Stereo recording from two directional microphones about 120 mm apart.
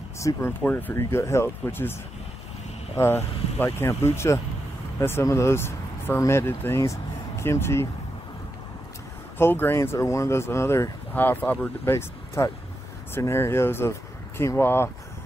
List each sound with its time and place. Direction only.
0.2 s speech: 20° left (ahead or behind)
3.0 s speech: 20° left (ahead or behind)
9.4 s speech: 20° left (ahead or behind)